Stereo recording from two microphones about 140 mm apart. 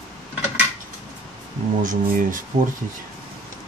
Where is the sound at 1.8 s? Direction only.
70° right (ahead or behind).